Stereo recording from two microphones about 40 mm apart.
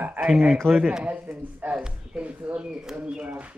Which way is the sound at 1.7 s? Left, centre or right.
Right.